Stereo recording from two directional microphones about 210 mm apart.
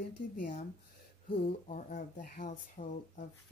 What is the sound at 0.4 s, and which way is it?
Speech, 40° left (ahead or behind).